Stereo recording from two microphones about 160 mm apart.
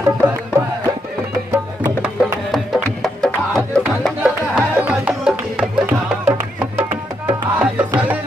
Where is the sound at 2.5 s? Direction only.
Centre (ahead or behind).